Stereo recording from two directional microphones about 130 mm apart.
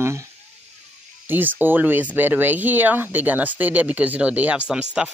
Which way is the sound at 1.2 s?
15° right (ahead or behind).